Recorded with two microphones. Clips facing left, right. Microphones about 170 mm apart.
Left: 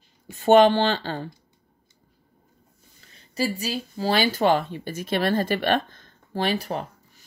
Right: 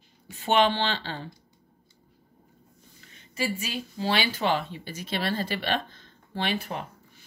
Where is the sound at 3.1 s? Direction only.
35° left (ahead or behind).